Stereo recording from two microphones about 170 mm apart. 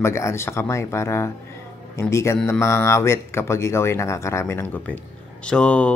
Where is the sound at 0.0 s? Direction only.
15° left (ahead or behind).